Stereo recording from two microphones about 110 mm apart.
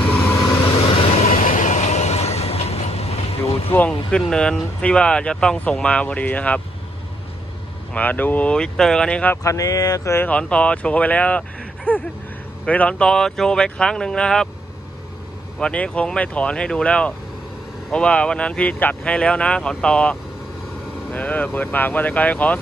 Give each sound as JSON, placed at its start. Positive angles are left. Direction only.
{"t": 0.1, "sound": "vehicle", "side_deg": 20}
{"t": 0.7, "sound": "vehicle", "side_deg": 55}
{"t": 1.7, "sound": "vehicle", "side_deg": 90}
{"t": 3.7, "sound": "speech", "side_deg": 10}
{"t": 7.9, "sound": "speech", "side_deg": 15}
{"t": 9.4, "sound": "speech", "side_deg": 30}
{"t": 10.3, "sound": "speech", "side_deg": 10}
{"t": 15.6, "sound": "speech", "side_deg": 10}